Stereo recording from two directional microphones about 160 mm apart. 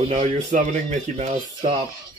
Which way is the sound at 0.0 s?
45° right (ahead or behind).